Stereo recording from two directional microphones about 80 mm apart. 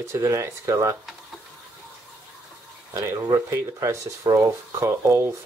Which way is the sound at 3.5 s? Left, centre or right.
Right.